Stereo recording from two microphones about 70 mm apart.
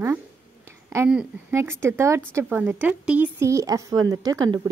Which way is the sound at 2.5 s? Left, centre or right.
Right.